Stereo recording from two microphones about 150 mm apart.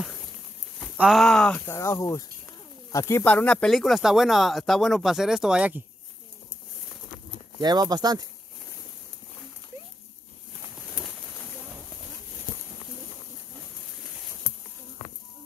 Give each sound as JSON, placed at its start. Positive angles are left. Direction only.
{"t": 0.9, "sound": "speech", "side_deg": -5}
{"t": 1.7, "sound": "speech", "side_deg": 20}
{"t": 7.6, "sound": "speech", "side_deg": -30}